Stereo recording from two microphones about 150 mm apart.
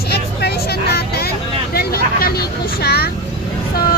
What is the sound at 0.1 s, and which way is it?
Vehicle, 90° left.